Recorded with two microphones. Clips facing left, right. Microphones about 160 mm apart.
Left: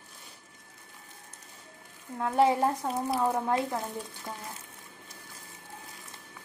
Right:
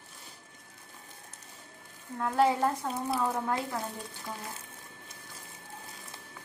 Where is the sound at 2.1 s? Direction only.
20° left (ahead or behind).